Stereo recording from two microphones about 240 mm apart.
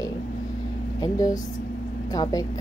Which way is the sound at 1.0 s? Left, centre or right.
Centre.